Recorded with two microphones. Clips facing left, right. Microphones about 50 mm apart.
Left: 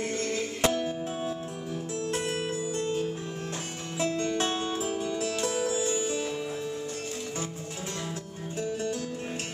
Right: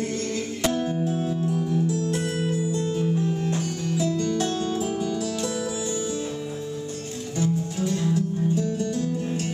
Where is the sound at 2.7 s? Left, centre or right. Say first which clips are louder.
Right 5 dB; left.